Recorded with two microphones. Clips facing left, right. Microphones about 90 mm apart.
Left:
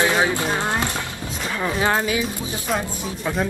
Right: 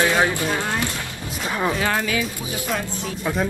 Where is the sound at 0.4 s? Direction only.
20° left (ahead or behind).